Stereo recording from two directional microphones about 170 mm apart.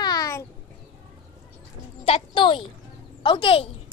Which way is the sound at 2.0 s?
30° left (ahead or behind).